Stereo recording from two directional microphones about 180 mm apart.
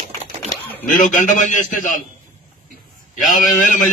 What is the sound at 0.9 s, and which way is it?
A man's voice, 45° left (ahead or behind).